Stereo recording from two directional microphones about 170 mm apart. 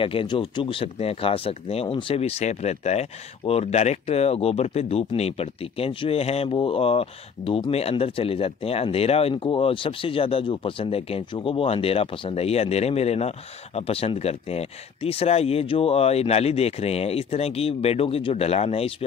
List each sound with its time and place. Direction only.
0.0 s speech: 30° left (ahead or behind)